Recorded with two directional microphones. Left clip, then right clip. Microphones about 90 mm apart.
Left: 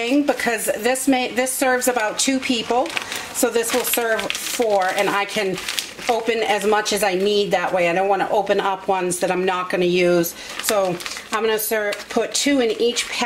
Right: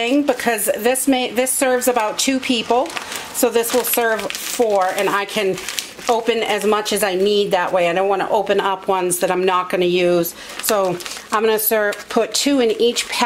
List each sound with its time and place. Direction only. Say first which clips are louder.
0.0 s speech: right 2 dB; 35° right (ahead or behind)
4.7 s speech: even; 20° right (ahead or behind)
5.0 s speech: right 2 dB; 30° right (ahead or behind)
11.3 s speech: right 4 dB; 45° right (ahead or behind)